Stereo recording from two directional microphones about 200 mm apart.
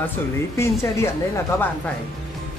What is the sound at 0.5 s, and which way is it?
Speech, 15° left (ahead or behind).